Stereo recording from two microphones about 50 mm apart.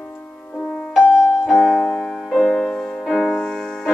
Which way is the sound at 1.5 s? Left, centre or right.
Centre.